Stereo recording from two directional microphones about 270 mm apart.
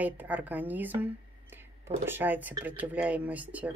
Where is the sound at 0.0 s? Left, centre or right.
Centre.